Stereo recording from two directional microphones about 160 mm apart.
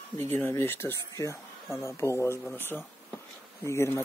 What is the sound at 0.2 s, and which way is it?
Speech, 15° left (ahead or behind).